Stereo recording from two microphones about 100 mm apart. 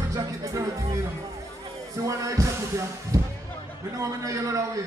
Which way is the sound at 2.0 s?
30° right (ahead or behind).